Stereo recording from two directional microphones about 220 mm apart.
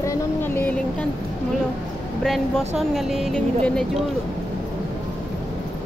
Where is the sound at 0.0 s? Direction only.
10° left (ahead or behind).